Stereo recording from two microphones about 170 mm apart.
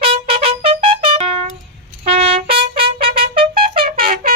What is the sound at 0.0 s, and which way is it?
Trumpet, 35° right (ahead or behind).